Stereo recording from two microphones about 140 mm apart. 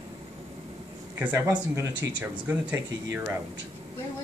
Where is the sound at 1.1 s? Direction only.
15° right (ahead or behind).